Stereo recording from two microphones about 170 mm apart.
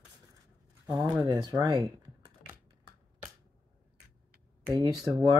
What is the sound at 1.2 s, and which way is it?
Speech, 25° right (ahead or behind).